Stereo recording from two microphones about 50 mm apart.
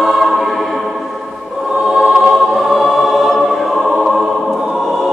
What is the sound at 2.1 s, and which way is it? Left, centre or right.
Music, centre.